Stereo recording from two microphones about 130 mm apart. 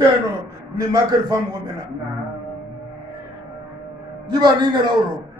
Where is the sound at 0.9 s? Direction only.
30° right (ahead or behind).